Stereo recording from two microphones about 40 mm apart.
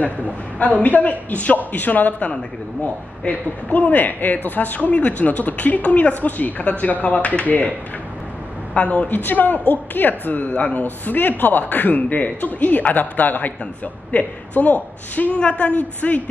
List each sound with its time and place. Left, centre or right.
0.0 s a man's voice: left
3.3 s a man's voice: left
8.7 s speech: left
9.1 s a man's voice: left
10.5 s a man's voice: left
15.3 s speech: left